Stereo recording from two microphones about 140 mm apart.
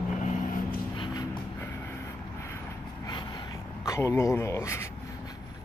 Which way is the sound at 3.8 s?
20° left (ahead or behind).